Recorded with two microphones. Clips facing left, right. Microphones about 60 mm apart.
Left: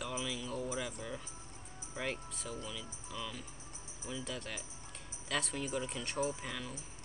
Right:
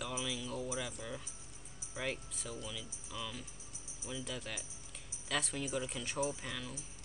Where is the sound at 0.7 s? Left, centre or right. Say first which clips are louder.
Left 1 dB; centre.